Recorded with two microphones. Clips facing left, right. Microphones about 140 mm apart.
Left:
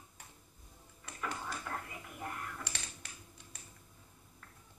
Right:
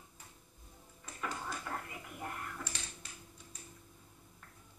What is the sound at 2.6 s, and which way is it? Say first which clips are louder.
Computer keyboard: right 1 dB; 65° left (ahead or behind).